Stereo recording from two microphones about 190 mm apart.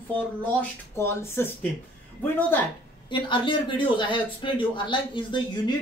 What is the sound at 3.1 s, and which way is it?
A man's voice, 25° left (ahead or behind).